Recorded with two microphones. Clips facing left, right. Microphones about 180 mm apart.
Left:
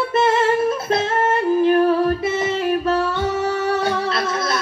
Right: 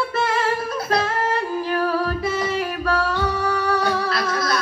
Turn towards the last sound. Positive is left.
turn(degrees=25)  # may be behind; listen again after turning